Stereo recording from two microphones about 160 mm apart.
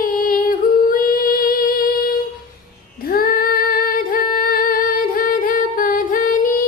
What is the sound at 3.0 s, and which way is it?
Female singing, 65° left (ahead or behind).